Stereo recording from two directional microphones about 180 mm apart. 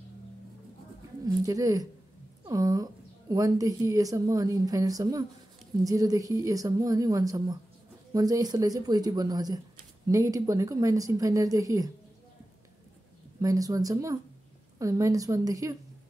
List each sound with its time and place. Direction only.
1.2 s a woman's voice: 20° right (ahead or behind)
13.4 s a woman's voice: 20° right (ahead or behind)